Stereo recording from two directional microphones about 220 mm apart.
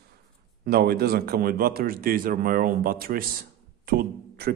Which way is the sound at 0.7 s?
45° right (ahead or behind).